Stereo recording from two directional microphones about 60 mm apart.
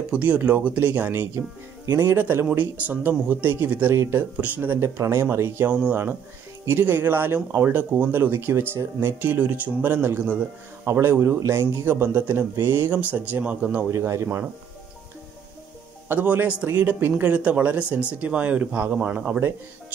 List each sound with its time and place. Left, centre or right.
0.1 s speech: right
4.7 s speech: right
5.7 s speech: right
10.9 s speech: right
13.0 s speech: right
13.8 s speech: right
16.1 s speech: right